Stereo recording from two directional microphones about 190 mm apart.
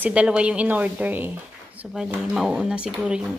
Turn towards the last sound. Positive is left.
turn(degrees=-5)  # may be behind; listen again after turning